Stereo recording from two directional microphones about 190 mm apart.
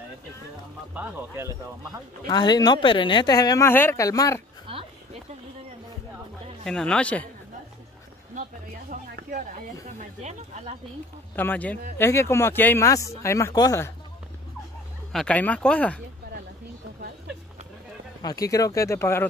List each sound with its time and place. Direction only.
0.9 s speech: 15° right (ahead or behind)
2.2 s speech: 20° left (ahead or behind)
4.6 s a sound: 30° right (ahead or behind)
6.6 s speech: 5° left (ahead or behind)
9.1 s speech: 45° right (ahead or behind)
11.3 s speech: 10° left (ahead or behind)
15.1 s speech: 5° left (ahead or behind)
18.2 s speech: 20° left (ahead or behind)